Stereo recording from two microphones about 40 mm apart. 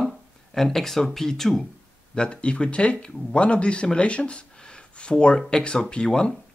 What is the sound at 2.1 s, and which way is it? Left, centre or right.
Speech, left.